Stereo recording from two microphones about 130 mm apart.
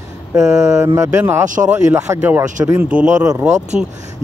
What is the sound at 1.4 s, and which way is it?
Speech, 80° right.